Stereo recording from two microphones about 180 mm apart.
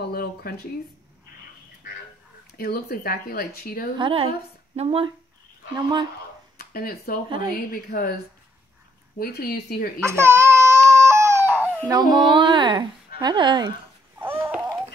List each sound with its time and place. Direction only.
0.0 s speech: 60° left (ahead or behind)
2.5 s speech: 55° left (ahead or behind)
4.0 s a woman's voice: 30° right (ahead or behind)
6.6 s a woman's voice: 55° left (ahead or behind)
9.2 s speech: 55° left (ahead or behind)
10.0 s baby cry: 15° right (ahead or behind)
11.8 s a child's voice: 25° right (ahead or behind)
14.1 s a sound: 10° right (ahead or behind)